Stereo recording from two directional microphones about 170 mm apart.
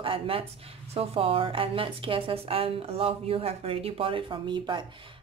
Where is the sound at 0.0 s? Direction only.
30° right (ahead or behind).